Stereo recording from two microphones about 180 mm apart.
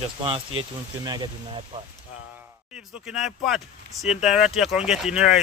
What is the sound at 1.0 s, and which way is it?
Speech, 20° right (ahead or behind).